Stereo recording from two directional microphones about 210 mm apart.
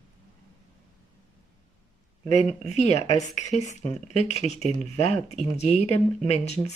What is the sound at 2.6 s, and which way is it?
Speech, 30° left (ahead or behind).